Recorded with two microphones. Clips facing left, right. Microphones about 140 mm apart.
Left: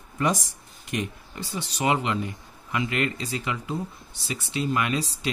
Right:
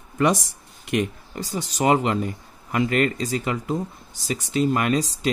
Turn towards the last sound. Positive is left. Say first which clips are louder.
# right 5 dB
turn(degrees=-45)  # may be behind; listen again after turning